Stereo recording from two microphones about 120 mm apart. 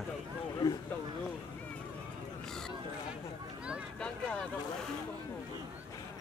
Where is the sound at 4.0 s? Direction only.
10° left (ahead or behind).